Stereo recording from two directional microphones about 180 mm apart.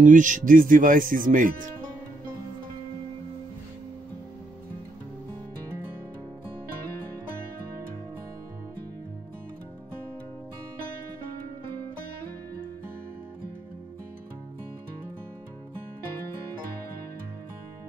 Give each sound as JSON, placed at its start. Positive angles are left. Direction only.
{"t": 0.0, "sound": "speech", "side_deg": -45}